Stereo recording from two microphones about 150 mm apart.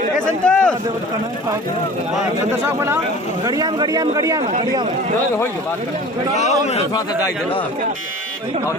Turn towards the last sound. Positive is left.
turn(degrees=45)  # may be behind; listen again after turning